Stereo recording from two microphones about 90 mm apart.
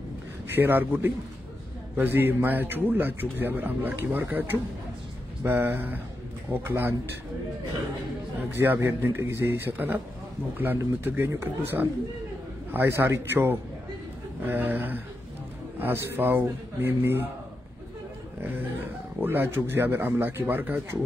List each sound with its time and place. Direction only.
0.5 s a man's voice: 25° right (ahead or behind)
8.4 s a man's voice: 25° right (ahead or behind)
11.1 s a man's voice: 25° right (ahead or behind)
18.4 s a man's voice: 20° right (ahead or behind)